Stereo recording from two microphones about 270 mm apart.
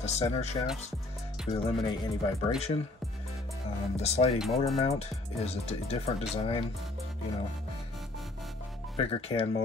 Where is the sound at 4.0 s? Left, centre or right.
Left.